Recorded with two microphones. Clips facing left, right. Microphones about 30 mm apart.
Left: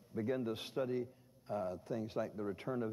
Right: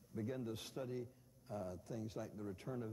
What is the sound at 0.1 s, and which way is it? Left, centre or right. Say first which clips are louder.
A man's voice: left 7 dB; left.